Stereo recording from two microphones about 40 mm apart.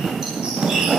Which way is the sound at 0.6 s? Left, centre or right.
Centre.